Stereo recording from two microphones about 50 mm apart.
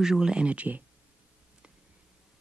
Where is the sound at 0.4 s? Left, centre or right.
Right.